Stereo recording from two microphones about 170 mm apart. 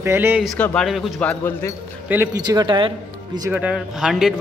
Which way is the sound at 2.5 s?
25° right (ahead or behind).